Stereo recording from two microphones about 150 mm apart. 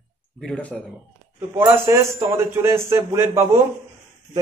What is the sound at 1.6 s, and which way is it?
A man's voice, 15° right (ahead or behind).